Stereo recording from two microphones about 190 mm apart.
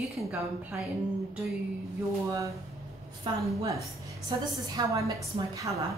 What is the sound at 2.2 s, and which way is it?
A woman's voice, 15° right (ahead or behind).